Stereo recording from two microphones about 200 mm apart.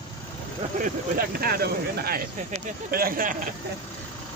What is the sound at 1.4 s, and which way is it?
Speech, 50° right (ahead or behind).